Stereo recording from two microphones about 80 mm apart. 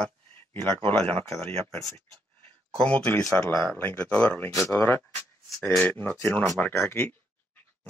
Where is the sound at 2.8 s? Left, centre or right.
Centre.